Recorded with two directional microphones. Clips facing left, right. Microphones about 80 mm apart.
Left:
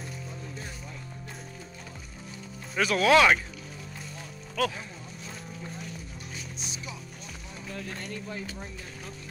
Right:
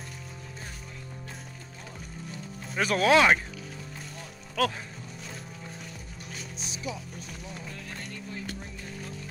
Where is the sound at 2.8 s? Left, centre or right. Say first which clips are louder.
Left 1 dB; right.